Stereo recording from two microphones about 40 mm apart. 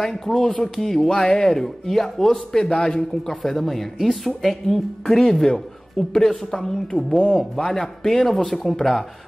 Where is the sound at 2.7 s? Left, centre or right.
Left.